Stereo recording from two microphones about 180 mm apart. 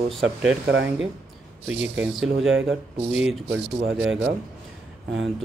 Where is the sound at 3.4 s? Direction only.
75° right (ahead or behind).